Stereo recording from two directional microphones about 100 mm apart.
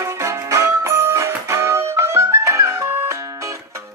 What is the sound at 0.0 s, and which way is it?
Music, 30° right (ahead or behind).